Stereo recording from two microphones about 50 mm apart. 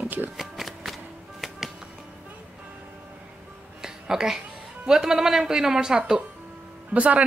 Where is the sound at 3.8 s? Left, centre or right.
Centre.